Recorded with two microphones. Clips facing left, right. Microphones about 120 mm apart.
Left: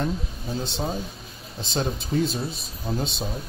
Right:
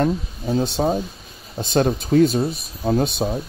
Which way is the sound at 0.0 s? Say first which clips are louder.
Right 7 dB; 55° right (ahead or behind).